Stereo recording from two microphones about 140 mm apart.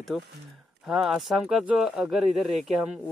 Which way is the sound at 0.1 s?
Centre (ahead or behind).